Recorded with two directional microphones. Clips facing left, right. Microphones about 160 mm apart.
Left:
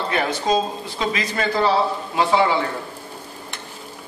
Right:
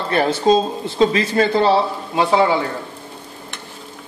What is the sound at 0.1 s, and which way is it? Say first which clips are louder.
Speech: right 7 dB; 30° right (ahead or behind).